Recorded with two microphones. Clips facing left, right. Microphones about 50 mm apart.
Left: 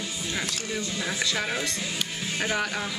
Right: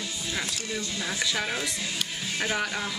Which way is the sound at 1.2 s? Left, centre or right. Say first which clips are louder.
Even; centre.